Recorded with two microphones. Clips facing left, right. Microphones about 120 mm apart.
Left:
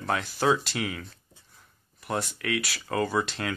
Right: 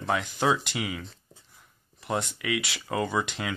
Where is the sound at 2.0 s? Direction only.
20° right (ahead or behind).